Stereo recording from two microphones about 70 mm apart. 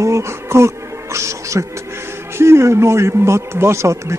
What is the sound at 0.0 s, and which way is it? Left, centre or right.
Music, right.